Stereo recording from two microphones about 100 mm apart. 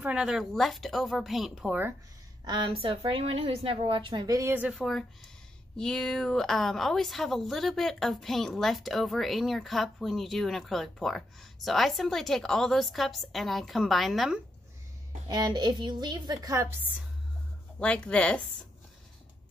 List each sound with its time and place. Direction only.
0.0 s a woman's voice: 10° right (ahead or behind)
2.4 s a woman's voice: 50° right (ahead or behind)
4.3 s a woman's voice: 30° right (ahead or behind)
4.7 s a woman's voice: centre (ahead or behind)
15.2 s a woman's voice: 45° right (ahead or behind)
17.7 s speech: 10° left (ahead or behind)